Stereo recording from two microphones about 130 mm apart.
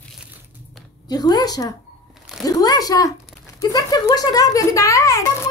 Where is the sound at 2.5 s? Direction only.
30° left (ahead or behind).